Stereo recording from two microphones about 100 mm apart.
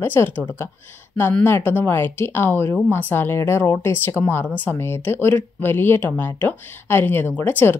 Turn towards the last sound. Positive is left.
turn(degrees=20)  # may be behind; listen again after turning